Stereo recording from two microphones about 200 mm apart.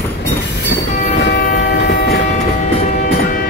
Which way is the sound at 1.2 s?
60° left (ahead or behind).